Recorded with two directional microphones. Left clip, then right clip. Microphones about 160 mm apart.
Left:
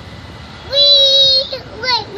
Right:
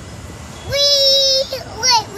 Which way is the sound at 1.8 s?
30° right (ahead or behind).